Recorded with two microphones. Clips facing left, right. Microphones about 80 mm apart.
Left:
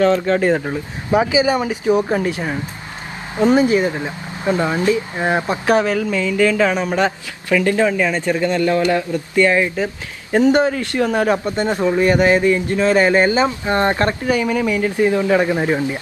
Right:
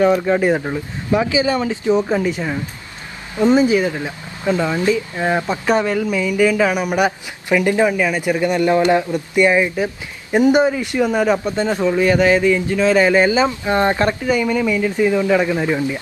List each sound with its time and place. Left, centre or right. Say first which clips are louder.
0.0 s speech: even; centre
1.1 s speech: left 1 dB; left
3.7 s speech: even; left
5.7 s speech: left 1 dB; centre
5.9 s speech: even; centre
11.1 s speech: even; centre
13.7 s speech: right 1 dB; centre
14.2 s speech: even; centre